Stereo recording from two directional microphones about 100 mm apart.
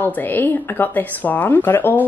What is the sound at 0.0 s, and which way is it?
A woman's voice, 20° left (ahead or behind).